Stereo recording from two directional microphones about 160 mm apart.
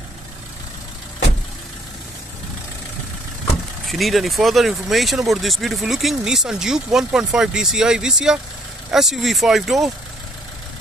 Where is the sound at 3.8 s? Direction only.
Centre (ahead or behind).